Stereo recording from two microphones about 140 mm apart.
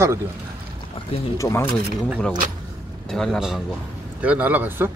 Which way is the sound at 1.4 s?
20° left (ahead or behind).